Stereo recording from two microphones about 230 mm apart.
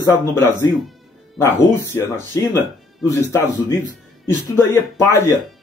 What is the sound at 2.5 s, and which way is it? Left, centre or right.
Speech, centre.